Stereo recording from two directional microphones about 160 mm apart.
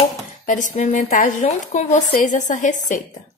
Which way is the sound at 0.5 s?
50° left (ahead or behind).